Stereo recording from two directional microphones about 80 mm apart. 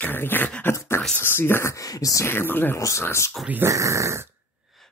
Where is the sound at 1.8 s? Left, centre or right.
Left.